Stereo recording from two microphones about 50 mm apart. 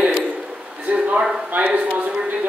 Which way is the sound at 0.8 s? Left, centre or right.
Right.